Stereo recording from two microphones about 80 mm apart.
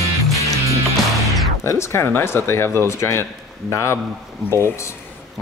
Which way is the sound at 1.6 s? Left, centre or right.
Left.